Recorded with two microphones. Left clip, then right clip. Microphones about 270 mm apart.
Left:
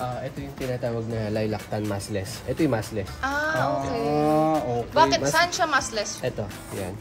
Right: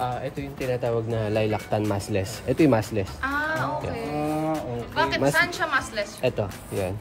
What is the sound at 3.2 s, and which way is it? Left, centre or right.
Music, centre.